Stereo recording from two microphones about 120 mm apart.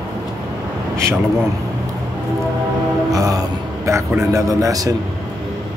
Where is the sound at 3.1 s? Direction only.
30° right (ahead or behind).